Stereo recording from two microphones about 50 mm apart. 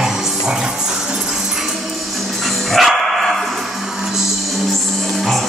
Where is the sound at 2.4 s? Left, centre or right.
Centre.